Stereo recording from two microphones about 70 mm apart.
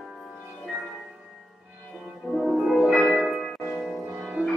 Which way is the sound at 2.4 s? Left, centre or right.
Centre.